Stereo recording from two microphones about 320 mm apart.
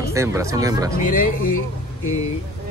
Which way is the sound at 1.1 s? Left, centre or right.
Left.